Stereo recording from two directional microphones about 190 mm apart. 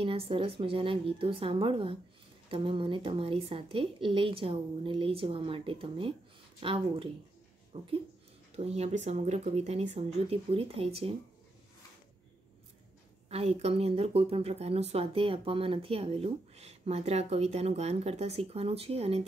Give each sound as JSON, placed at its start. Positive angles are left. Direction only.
{"t": 0.0, "sound": "a woman's voice", "side_deg": -30}
{"t": 13.3, "sound": "speech", "side_deg": -35}